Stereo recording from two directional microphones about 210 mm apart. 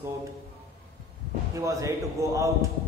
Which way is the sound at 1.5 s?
15° right (ahead or behind).